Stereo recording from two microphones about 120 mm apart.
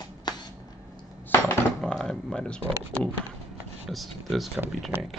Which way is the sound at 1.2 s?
15° left (ahead or behind).